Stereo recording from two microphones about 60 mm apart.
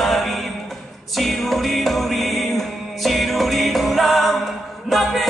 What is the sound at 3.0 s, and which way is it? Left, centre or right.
Music, centre.